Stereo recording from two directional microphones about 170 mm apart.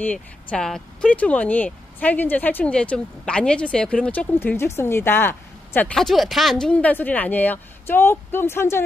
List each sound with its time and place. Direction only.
0.0 s speech: 10° left (ahead or behind)